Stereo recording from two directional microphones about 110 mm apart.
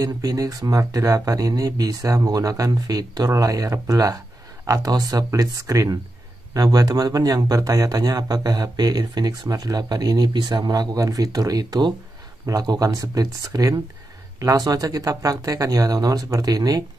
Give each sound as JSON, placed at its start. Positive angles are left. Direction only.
{"t": 0.0, "sound": "speech", "side_deg": -35}